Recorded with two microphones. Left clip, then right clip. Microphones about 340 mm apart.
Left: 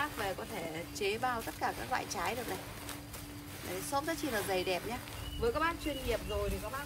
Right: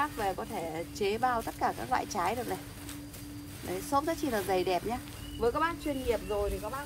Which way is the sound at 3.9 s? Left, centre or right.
Centre.